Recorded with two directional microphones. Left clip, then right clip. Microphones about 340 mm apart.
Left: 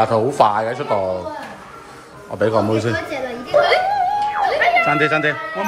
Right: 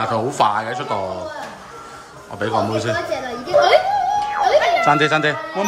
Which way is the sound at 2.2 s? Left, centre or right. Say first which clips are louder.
Left 3 dB; centre.